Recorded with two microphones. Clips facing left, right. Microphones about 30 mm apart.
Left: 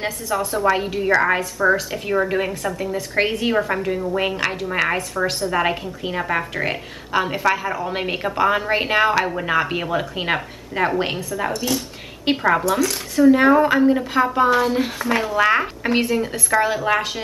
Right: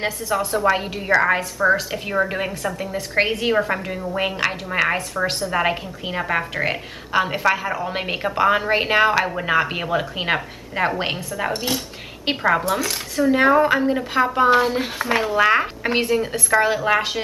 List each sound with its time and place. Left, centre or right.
0.0 s a woman's voice: centre
11.5 s speech: right
12.3 s a woman's voice: centre